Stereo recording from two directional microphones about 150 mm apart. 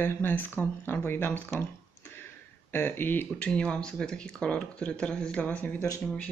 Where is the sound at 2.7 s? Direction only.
15° left (ahead or behind).